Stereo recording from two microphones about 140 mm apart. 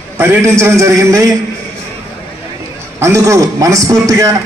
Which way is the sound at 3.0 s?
20° right (ahead or behind).